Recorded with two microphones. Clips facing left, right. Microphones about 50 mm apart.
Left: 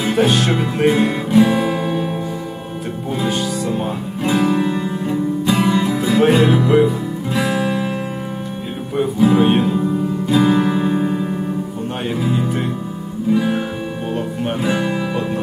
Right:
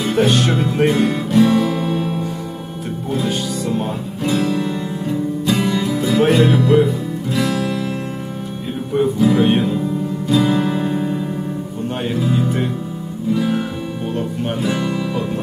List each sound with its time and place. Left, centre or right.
0.0 s music: centre
3.3 s music: centre
4.2 s music: centre
9.2 s music: centre
10.2 s music: centre
14.6 s music: centre